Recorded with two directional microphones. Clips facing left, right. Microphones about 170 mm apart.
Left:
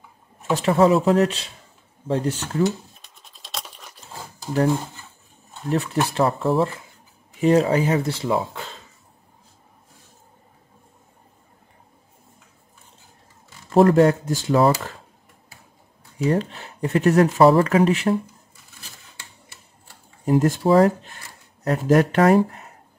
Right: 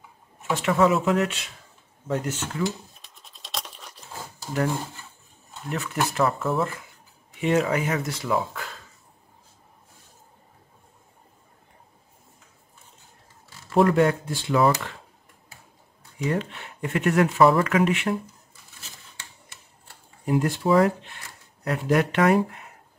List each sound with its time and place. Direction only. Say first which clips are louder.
0.4 s speech: left 4 dB; 35° left (ahead or behind)
3.0 s scratch: even; centre (ahead or behind)
5.7 s speech: left 5 dB; 35° left (ahead or behind)
13.7 s speech: left 5 dB; 40° left (ahead or behind)
16.3 s speech: left 5 dB; 35° left (ahead or behind)
20.2 s speech: left 4 dB; 45° left (ahead or behind)